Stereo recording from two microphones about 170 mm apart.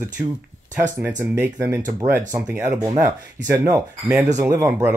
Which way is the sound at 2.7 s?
20° right (ahead or behind).